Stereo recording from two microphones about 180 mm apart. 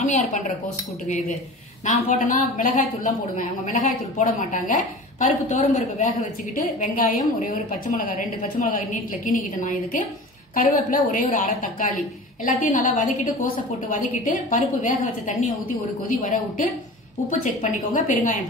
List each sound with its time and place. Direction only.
0.0 s speech: 45° left (ahead or behind)
1.9 s a woman's voice: 40° left (ahead or behind)